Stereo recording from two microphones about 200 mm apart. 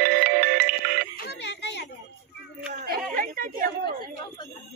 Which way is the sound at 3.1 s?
45° right (ahead or behind).